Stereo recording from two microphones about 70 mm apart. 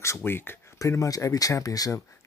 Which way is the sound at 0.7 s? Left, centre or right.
Left.